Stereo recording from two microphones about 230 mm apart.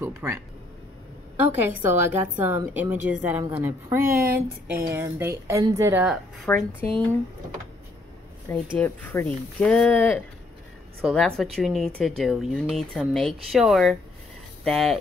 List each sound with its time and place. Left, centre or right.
0.0 s a woman's voice: centre
1.6 s a woman's voice: centre
4.1 s speech: right
4.9 s a woman's voice: centre
6.5 s speech: centre
8.7 s a woman's voice: centre